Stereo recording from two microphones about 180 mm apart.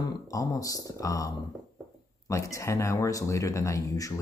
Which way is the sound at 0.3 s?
20° left (ahead or behind).